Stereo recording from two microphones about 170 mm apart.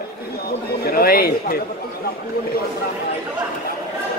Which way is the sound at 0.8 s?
60° left (ahead or behind).